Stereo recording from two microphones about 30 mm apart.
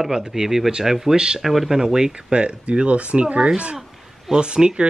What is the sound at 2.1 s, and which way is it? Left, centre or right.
Speech, right.